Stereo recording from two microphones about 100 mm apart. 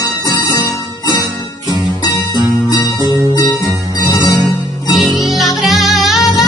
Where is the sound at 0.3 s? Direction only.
50° left (ahead or behind).